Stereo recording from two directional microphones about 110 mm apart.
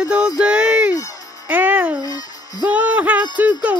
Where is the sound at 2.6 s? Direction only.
15° right (ahead or behind).